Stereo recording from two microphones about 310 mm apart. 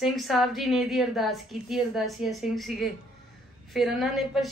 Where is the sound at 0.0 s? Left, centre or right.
Centre.